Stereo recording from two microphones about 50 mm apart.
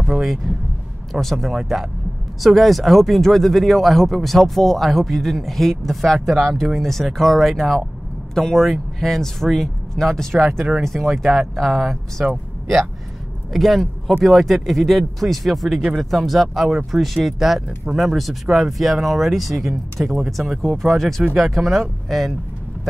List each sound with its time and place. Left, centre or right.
0.0 s speech: centre
13.5 s speech: centre